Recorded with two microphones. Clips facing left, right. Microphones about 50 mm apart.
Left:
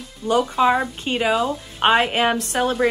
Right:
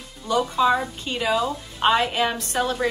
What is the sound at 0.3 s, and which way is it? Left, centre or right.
Speech, left.